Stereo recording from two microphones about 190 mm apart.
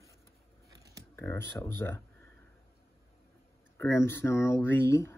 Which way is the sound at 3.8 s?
15° left (ahead or behind).